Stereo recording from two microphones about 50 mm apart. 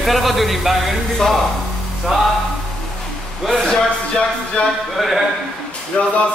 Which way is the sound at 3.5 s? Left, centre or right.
Centre.